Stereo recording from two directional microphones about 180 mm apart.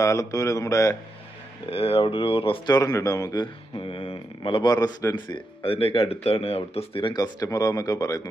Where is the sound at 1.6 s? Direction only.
30° left (ahead or behind).